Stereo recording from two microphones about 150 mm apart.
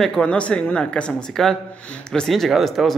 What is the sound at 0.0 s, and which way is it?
Speech, 5° left (ahead or behind).